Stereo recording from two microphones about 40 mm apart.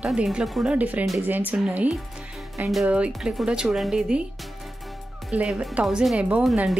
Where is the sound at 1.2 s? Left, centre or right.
Right.